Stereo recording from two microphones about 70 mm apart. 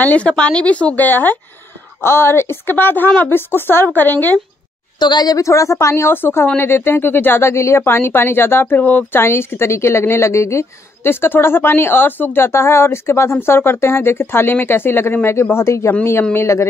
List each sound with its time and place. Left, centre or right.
0.0 s speech: centre
2.0 s speech: left
5.0 s a woman's voice: left
5.5 s speech: left